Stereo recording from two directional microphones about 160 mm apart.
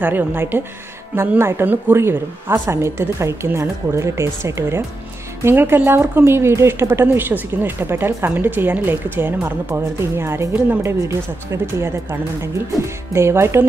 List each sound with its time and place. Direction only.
0.0 s speech: 10° right (ahead or behind)